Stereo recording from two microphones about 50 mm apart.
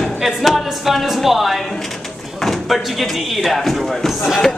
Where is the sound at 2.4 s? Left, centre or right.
Centre.